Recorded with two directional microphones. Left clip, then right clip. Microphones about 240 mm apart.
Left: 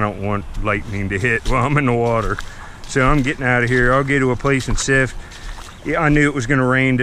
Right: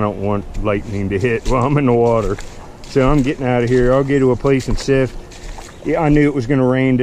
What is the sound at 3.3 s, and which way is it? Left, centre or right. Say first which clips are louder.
Speech: even; left.